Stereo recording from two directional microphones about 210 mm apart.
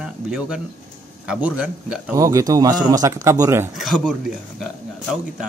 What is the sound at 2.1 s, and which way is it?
Speech, 15° right (ahead or behind).